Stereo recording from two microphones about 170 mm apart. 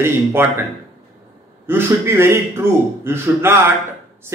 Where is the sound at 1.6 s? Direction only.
15° right (ahead or behind).